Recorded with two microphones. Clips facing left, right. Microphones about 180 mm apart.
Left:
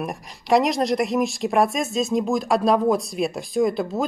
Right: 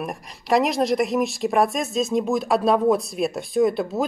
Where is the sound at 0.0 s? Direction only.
Centre (ahead or behind).